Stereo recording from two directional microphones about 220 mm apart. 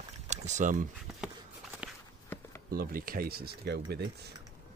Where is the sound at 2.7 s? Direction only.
40° right (ahead or behind).